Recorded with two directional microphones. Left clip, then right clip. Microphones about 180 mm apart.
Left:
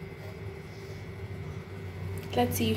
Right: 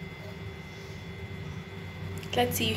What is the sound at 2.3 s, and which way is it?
Speech, 10° left (ahead or behind).